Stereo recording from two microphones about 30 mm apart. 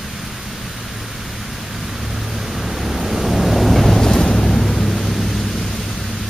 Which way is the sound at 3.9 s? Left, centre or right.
Centre.